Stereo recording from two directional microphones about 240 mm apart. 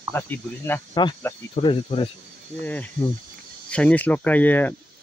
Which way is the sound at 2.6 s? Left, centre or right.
Centre.